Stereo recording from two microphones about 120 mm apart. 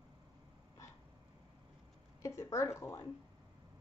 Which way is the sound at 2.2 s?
25° left (ahead or behind).